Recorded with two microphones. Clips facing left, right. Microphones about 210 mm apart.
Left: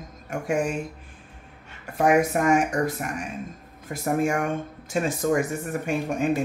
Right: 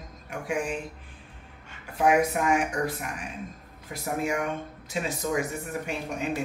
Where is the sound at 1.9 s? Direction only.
45° left (ahead or behind).